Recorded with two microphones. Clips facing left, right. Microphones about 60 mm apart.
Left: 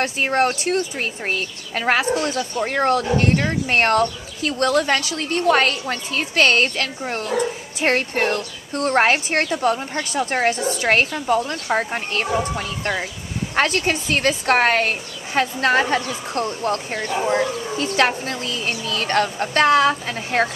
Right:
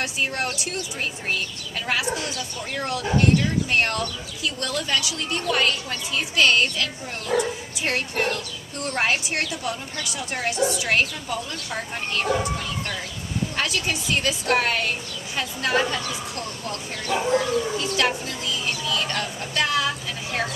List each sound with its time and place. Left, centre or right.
0.0 s a woman's voice: left